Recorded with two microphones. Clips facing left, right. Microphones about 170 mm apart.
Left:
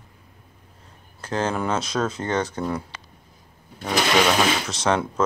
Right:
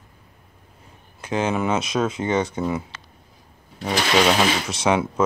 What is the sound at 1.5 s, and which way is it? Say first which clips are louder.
Speech: right 2 dB; 5° right (ahead or behind).